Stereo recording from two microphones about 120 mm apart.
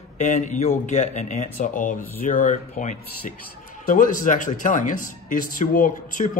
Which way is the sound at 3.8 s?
90° left.